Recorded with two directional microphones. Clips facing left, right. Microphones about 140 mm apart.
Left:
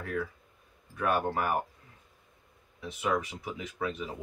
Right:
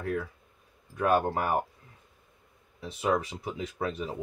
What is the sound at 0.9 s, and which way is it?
Speech, 30° right (ahead or behind).